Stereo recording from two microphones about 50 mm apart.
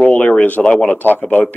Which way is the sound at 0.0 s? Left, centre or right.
Left.